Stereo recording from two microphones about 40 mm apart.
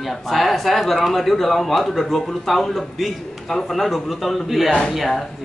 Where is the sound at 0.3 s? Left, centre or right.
Centre.